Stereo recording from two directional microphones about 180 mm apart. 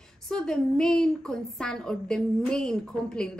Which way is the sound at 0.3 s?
5° left (ahead or behind).